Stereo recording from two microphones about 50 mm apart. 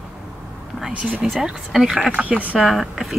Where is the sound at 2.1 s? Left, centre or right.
Right.